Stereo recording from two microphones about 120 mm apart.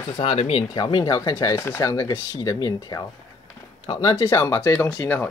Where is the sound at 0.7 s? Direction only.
40° left (ahead or behind).